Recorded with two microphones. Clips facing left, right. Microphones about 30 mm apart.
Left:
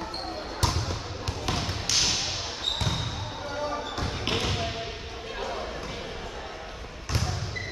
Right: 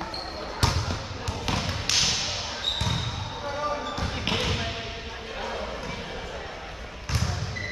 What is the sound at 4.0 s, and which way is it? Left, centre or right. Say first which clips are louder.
Basketball bounce: right 1 dB; centre.